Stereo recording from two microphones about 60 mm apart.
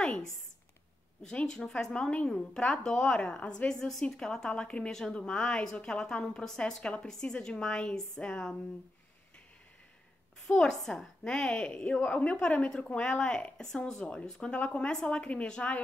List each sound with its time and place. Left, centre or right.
0.0 s a woman's voice: centre
10.4 s a woman's voice: centre